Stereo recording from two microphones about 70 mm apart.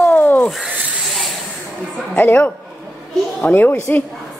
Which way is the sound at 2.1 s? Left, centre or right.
Left.